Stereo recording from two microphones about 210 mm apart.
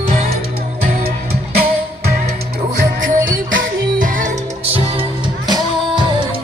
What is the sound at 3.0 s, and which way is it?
Music, 40° right (ahead or behind).